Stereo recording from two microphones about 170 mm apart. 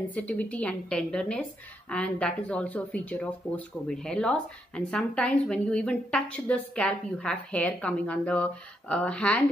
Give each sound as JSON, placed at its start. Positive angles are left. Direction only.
{"t": 0.0, "sound": "speech", "side_deg": 10}